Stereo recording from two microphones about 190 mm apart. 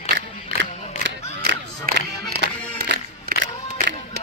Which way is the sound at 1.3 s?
60° right (ahead or behind).